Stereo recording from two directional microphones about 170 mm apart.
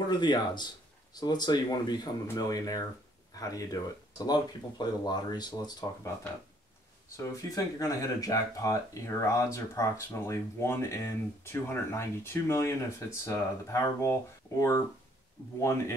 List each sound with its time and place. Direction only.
0.1 s speech: 25° left (ahead or behind)
7.2 s speech: 20° left (ahead or behind)